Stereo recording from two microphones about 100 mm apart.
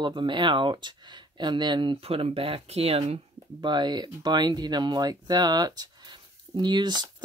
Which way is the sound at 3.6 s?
50° right (ahead or behind).